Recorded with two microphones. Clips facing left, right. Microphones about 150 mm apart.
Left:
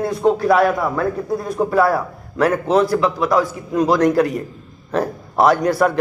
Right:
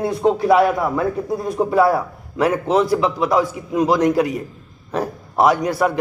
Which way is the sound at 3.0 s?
20° right (ahead or behind).